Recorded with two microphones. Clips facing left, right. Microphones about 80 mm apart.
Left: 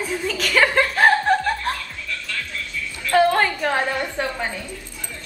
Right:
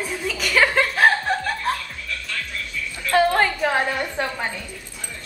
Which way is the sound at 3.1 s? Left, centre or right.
Centre.